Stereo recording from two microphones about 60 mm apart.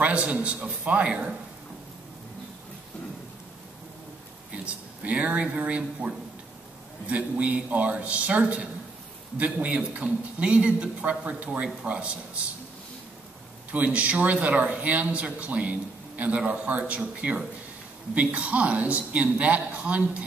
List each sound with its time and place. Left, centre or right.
0.0 s speech: right
5.0 s speech: right
13.7 s speech: right